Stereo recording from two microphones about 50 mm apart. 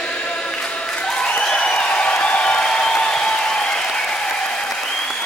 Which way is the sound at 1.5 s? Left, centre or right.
Centre.